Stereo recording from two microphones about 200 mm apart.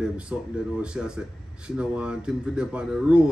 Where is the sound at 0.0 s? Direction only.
5° right (ahead or behind).